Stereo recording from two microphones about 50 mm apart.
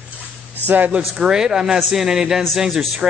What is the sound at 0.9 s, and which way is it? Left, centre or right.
A man's voice, centre.